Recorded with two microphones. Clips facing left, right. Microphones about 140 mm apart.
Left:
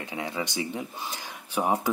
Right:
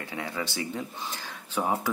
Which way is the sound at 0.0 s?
20° left (ahead or behind).